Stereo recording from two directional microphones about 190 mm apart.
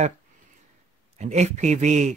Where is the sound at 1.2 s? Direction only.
35° right (ahead or behind).